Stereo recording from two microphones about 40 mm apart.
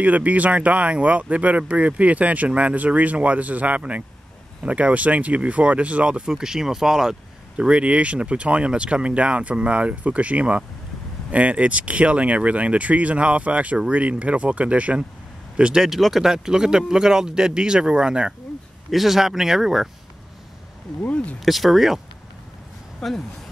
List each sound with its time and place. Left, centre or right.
0.0 s speech: right
6.2 s speech: centre
7.5 s speech: right
15.5 s speech: right
15.8 s speech: centre; by 18.3 s right
18.9 s speech: centre
21.0 s speech: left
21.5 s speech: centre
22.9 s speech: centre